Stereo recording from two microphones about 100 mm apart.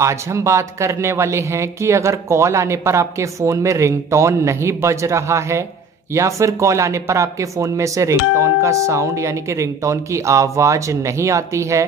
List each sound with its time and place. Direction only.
0.0 s speech: 30° right (ahead or behind)